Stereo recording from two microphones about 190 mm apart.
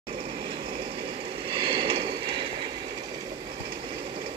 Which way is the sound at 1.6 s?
25° right (ahead or behind).